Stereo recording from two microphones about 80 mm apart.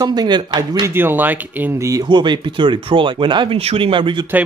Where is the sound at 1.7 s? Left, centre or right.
Right.